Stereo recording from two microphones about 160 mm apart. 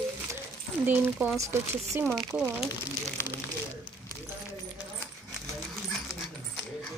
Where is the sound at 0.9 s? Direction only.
10° right (ahead or behind).